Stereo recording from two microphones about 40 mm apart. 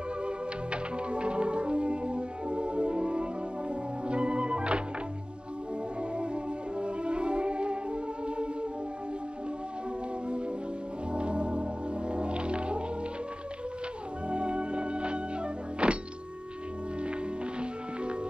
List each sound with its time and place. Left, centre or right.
0.7 s music: right
6.1 s music: right
11.1 s music: right
14.3 s music: right